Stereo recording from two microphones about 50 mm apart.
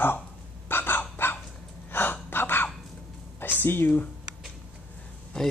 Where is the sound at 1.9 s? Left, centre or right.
Left.